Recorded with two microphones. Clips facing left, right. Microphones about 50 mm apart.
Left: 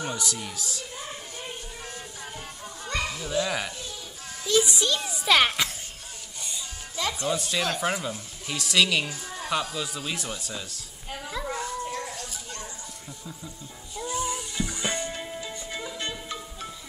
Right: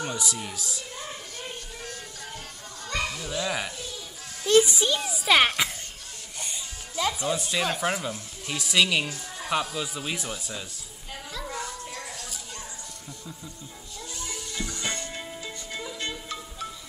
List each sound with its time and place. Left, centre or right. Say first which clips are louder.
0.2 s speech: even; centre
2.9 s speech: left 1 dB; centre
4.6 s speech: right 1 dB; centre
5.0 s speech: right 1 dB; centre
7.0 s speech: right 1 dB; centre
11.1 s music: left 4 dB; centre
11.5 s children playing: left 4 dB; centre
13.9 s music: left 9 dB; centre